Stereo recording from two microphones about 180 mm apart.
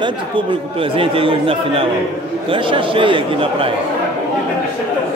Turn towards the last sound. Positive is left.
turn(degrees=-30)  # may be behind; listen again after turning